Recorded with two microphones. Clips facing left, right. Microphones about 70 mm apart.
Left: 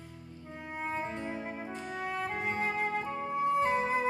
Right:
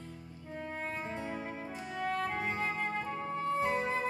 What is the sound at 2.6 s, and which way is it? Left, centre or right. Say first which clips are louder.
Flute: left 3 dB; centre.